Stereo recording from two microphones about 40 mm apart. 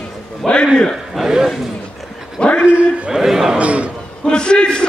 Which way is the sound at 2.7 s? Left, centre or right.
Right.